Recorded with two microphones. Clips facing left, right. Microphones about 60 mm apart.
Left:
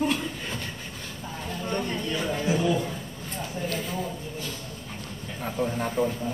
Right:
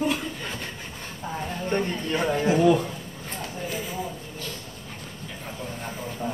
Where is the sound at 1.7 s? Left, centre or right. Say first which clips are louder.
Right 3 dB; right.